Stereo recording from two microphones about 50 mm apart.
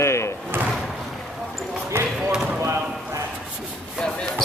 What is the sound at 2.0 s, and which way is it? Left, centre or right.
Basketball bounce, right.